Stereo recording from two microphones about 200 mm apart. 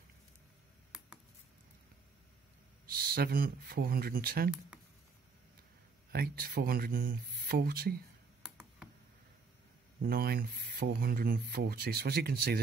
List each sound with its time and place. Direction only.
2.9 s speech: 50° right (ahead or behind)
6.1 s speech: 50° right (ahead or behind)
8.4 s computer keyboard: 5° right (ahead or behind)
10.0 s speech: 50° right (ahead or behind)